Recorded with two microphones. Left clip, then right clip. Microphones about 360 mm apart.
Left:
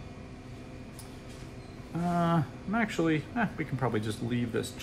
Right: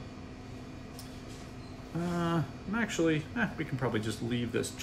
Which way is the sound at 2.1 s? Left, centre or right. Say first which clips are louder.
Left 4 dB; centre.